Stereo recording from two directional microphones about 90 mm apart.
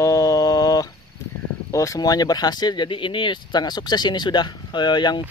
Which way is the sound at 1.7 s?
40° left (ahead or behind).